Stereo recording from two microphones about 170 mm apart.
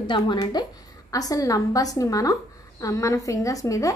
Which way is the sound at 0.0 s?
25° left (ahead or behind).